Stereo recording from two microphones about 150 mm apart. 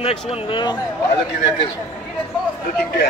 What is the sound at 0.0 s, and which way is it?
Speech, 40° left (ahead or behind).